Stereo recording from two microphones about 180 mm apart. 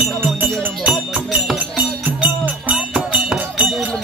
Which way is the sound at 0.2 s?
10° right (ahead or behind).